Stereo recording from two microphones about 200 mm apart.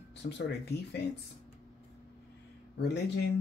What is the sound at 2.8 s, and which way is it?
Speech, 55° left (ahead or behind).